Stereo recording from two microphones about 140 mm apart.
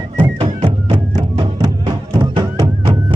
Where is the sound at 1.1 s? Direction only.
30° right (ahead or behind).